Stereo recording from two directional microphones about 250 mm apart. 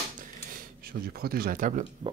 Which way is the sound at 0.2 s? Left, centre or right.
Right.